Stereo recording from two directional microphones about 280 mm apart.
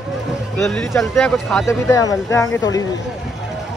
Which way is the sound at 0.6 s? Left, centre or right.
Centre.